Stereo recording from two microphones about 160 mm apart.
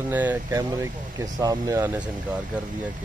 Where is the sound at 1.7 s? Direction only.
10° right (ahead or behind).